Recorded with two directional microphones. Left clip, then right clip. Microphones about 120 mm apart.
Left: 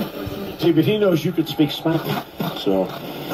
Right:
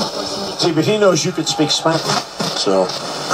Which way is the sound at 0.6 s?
45° right (ahead or behind).